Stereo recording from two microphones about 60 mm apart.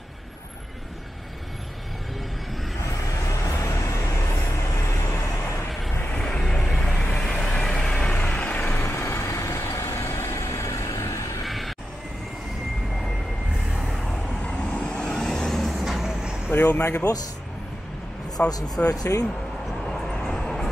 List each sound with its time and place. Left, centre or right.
3.2 s vehicle: left
6.1 s vehicle: centre; by 8.8 s left
8.8 s vehicle: left
11.4 s a sound: centre
13.7 s a sound: centre
14.4 s vehicle: centre
16.5 s speech: left
17.0 s speech: left
18.4 s speech: left
18.9 s speech: left
19.9 s vehicle: centre